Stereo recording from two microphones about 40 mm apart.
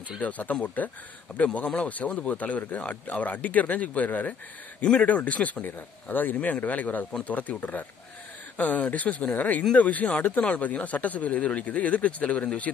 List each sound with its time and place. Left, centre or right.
0.2 s speech: left
6.0 s speech: left
6.3 s speech: left
12.7 s speech: centre